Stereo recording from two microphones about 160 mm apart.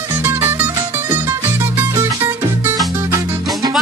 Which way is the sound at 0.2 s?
15° right (ahead or behind).